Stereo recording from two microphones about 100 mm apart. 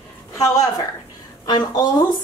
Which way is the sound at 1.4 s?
40° left (ahead or behind).